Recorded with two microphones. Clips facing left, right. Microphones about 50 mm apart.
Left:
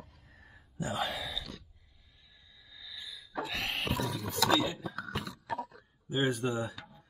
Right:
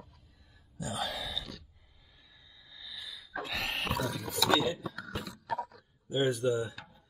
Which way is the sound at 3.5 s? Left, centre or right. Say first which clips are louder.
Right 2 dB; centre.